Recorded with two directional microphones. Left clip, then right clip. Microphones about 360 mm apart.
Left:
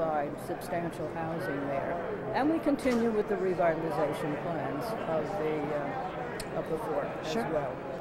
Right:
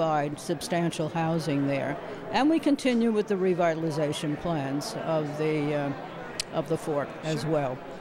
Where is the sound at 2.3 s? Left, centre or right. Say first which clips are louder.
Right 5 dB; right.